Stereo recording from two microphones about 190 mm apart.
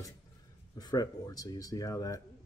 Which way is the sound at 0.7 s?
20° left (ahead or behind).